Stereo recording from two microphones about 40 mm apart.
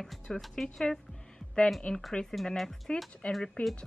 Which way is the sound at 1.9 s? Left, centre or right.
Left.